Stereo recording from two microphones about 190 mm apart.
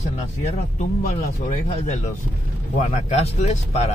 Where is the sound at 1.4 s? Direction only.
40° left (ahead or behind).